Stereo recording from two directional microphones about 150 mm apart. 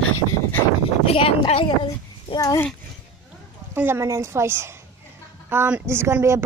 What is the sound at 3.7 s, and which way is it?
Speech, 15° right (ahead or behind).